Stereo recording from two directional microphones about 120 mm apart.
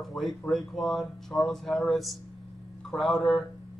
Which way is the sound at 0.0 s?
Centre (ahead or behind).